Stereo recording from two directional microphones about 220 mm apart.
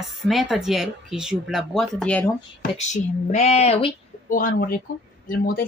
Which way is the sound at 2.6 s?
30° left (ahead or behind).